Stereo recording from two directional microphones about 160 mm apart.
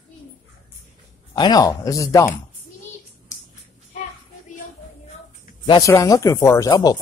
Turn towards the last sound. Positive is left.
turn(degrees=25)  # may be behind; listen again after turning